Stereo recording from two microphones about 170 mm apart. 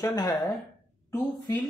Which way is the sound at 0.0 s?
25° left (ahead or behind).